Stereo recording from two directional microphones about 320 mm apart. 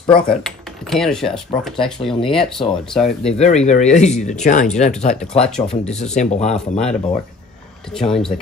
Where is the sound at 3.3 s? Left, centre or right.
Left.